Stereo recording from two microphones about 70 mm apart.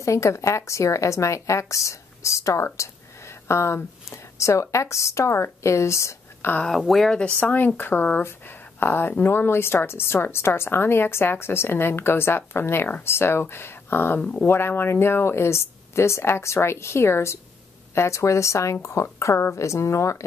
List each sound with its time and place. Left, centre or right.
0.0 s a woman's voice: left
6.4 s a woman's voice: left
6.8 s speech: centre
7.2 s a woman's voice: centre
14.5 s a woman's voice: left